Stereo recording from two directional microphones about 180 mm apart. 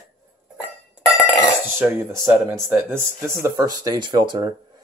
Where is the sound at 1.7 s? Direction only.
15° right (ahead or behind).